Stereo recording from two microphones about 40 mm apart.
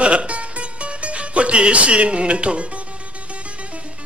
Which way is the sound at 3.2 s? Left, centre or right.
Right.